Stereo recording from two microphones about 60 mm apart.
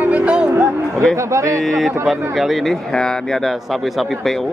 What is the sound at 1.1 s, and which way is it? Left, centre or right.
Speech, right.